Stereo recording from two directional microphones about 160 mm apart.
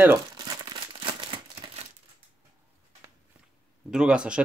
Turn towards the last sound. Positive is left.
turn(degrees=-5)  # may be behind; listen again after turning